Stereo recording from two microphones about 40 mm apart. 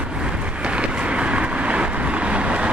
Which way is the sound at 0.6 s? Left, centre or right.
Right.